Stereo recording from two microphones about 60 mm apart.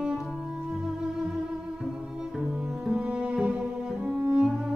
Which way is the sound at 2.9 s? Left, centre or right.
Centre.